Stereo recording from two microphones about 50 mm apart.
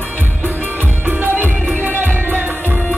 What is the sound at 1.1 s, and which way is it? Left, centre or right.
Music, right.